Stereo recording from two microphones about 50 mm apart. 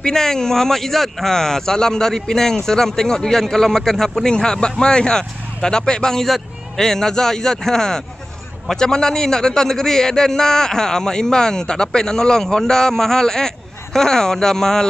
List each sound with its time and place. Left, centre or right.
0.0 s speech: centre